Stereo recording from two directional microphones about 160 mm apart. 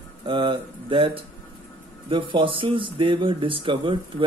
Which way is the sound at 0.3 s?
30° right (ahead or behind).